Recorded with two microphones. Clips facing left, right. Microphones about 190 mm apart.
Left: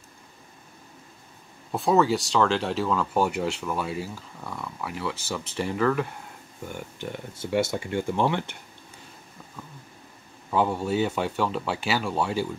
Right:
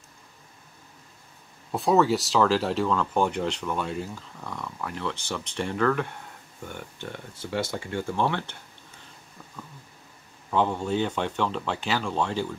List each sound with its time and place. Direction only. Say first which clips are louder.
1.7 s speech: even; centre (ahead or behind)
7.5 s speech: left 4 dB; 20° left (ahead or behind)
10.5 s speech: left 1 dB; 5° left (ahead or behind)